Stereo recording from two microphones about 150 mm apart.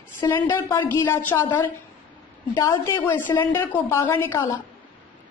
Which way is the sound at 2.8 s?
20° left (ahead or behind).